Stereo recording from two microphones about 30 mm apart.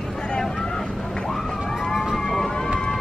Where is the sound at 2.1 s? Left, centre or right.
Centre.